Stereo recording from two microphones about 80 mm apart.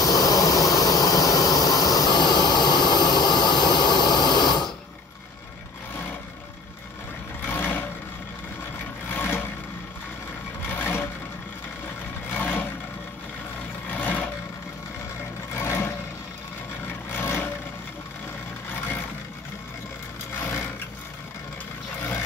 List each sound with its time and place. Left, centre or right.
0.0 s a sound: left
2.1 s a sound: left
7.5 s vehicle: left
9.1 s vehicle: left
10.8 s sewing machine: left
12.4 s vehicle: left
13.8 s vehicle: left
15.6 s vehicle: left
17.2 s vehicle: left